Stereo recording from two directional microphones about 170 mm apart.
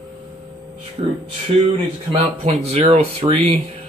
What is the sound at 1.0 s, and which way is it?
Speech, 35° right (ahead or behind).